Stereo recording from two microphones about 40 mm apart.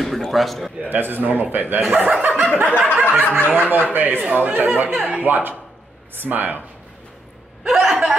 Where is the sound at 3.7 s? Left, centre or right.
Right.